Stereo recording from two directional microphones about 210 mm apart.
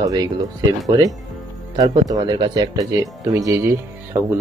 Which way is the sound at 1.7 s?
20° right (ahead or behind).